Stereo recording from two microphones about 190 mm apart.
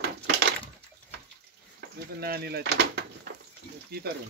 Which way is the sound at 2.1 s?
55° right (ahead or behind).